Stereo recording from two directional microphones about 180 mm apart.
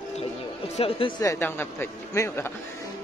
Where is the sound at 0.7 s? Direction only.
30° left (ahead or behind).